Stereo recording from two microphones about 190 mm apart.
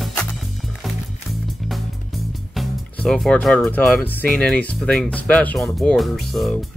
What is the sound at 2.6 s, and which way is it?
Speech, centre (ahead or behind).